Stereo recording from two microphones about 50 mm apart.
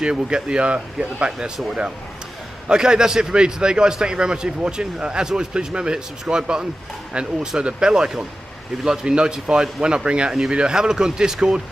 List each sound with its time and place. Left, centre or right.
0.0 s speech: centre
2.7 s a man's voice: centre